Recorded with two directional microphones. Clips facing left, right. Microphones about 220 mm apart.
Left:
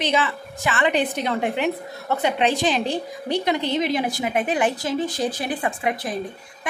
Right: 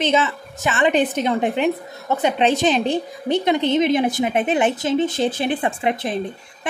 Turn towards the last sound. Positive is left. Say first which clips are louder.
# right 3 dB
turn(degrees=-25)  # may be behind; listen again after turning